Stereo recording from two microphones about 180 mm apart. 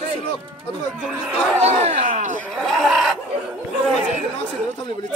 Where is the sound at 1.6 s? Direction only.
40° right (ahead or behind).